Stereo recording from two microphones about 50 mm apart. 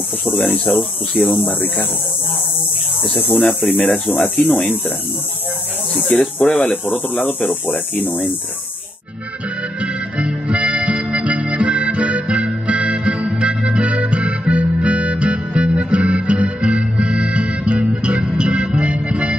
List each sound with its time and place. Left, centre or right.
0.5 s speech: left
3.2 s speech: left
3.4 s speech: left
6.0 s speech: left
7.9 s speech: left
9.8 s harmonica: right